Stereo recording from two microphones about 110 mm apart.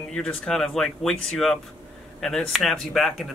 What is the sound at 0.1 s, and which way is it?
Speech, 5° left (ahead or behind).